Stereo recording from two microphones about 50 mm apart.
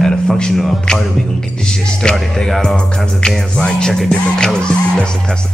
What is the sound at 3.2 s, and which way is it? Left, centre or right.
Music, centre.